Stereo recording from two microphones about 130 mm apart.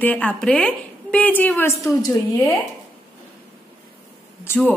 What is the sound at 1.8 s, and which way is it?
Speech, 25° left (ahead or behind).